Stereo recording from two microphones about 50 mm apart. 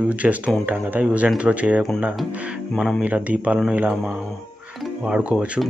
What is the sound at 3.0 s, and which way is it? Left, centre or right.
Speech, right.